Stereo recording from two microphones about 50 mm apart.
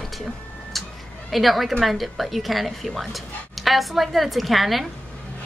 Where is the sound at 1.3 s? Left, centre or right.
Centre.